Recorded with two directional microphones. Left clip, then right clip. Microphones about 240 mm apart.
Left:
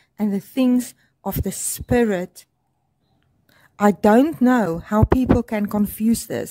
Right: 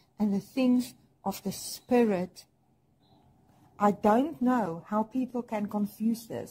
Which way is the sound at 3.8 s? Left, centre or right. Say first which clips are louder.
Left 9 dB; left.